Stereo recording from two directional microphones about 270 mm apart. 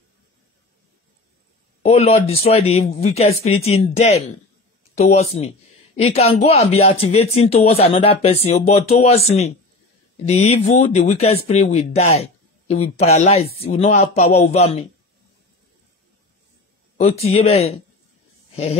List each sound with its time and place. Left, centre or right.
1.8 s a man's voice: left
10.2 s a man's voice: left
16.9 s a man's voice: left